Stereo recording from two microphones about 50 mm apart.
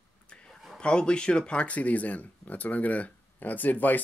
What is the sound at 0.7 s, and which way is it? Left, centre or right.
Speech, centre.